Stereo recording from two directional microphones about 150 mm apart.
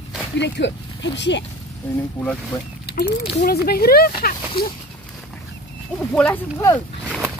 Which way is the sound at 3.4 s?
90° left.